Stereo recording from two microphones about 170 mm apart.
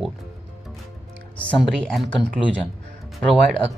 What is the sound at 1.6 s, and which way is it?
Speech, centre (ahead or behind).